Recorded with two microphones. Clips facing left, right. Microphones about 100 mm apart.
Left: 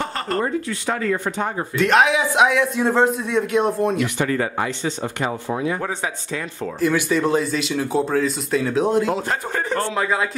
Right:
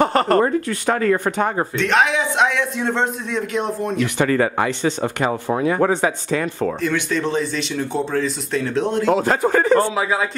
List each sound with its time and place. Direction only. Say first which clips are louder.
0.0 s speech: right 8 dB; 65° right (ahead or behind)
1.8 s a man's voice: left 3 dB; centre (ahead or behind)
4.2 s speech: right 4 dB; 70° right (ahead or behind)
6.8 s a man's voice: left 7 dB; 5° left (ahead or behind)
9.1 s a man's voice: right 7 dB; 90° right
9.9 s a man's voice: right 1 dB; 5° right (ahead or behind)